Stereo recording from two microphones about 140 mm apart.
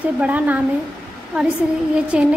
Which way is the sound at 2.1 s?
5° right (ahead or behind).